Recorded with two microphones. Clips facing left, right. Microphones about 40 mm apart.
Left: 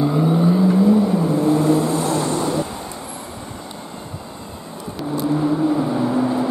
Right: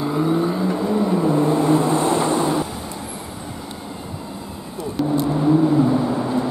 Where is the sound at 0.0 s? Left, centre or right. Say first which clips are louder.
Left 2 dB; centre.